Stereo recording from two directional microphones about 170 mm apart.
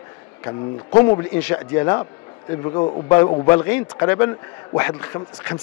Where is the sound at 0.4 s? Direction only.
15° left (ahead or behind); by 3.1 s 30° left (ahead or behind).